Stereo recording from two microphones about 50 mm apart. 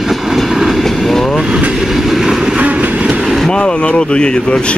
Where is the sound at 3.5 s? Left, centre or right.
Left.